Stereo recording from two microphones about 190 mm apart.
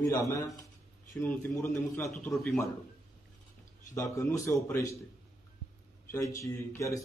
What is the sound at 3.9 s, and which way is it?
Speech, 15° left (ahead or behind).